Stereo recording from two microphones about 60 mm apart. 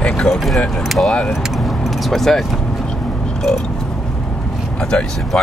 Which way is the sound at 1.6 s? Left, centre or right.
Centre.